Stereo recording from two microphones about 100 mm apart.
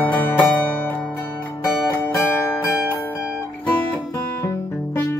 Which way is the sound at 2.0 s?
30° left (ahead or behind).